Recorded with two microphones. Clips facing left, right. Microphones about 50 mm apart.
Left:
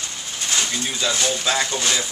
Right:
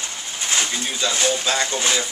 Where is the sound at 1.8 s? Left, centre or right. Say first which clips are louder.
Right 1 dB; centre.